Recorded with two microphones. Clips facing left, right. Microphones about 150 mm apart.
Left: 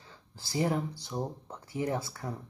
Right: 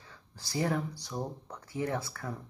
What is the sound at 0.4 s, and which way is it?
Speech, 25° left (ahead or behind).